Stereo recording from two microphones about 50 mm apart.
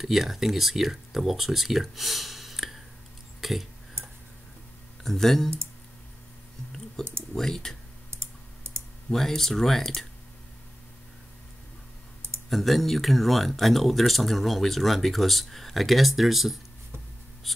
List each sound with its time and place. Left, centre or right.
0.0 s speech: centre
3.3 s a sound: centre
5.0 s speech: centre
7.0 s speech: centre
8.1 s clicking: right
9.1 s speech: centre
12.4 s speech: centre
17.4 s a sound: centre